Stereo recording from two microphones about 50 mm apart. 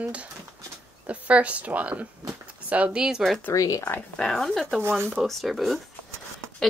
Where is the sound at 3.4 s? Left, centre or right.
Left.